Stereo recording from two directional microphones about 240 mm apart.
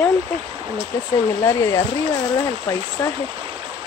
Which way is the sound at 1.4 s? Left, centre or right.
Centre.